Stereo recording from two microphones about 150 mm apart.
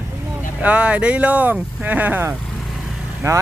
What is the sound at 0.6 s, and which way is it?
Speech, 10° right (ahead or behind).